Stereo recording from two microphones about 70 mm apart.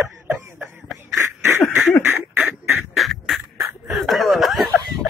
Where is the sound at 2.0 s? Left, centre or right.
Right.